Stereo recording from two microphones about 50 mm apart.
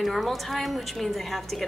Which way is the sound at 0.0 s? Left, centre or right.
Centre.